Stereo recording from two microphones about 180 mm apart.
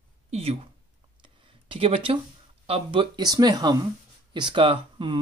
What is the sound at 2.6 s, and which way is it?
Speech, 30° right (ahead or behind).